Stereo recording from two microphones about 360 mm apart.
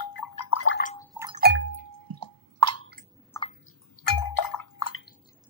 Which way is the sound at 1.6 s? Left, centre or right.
Right.